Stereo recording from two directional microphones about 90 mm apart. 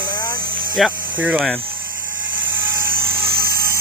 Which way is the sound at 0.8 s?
Centre (ahead or behind).